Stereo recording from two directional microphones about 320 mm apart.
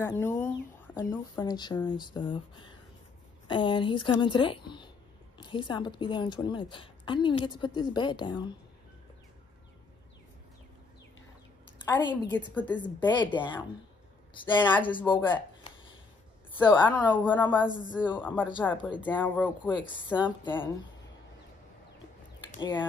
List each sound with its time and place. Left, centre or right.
0.2 s a woman's voice: centre
11.9 s a woman's voice: centre
22.6 s a woman's voice: centre